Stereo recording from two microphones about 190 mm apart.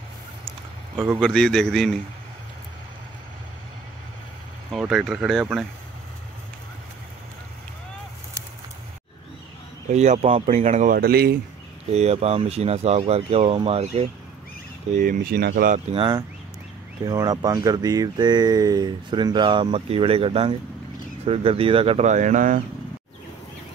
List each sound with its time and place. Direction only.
1.2 s speech: 5° left (ahead or behind)
4.6 s speech: centre (ahead or behind)
9.9 s speech: 35° right (ahead or behind); by 11.3 s 55° right (ahead or behind)
11.9 s speech: 35° right (ahead or behind)
15.0 s speech: 50° right (ahead or behind)
15.7 s speech: 30° right (ahead or behind)